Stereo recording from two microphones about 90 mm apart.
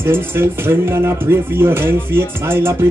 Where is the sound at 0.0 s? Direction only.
25° right (ahead or behind).